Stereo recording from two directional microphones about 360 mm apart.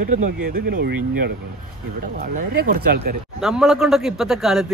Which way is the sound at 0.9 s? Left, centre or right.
Right.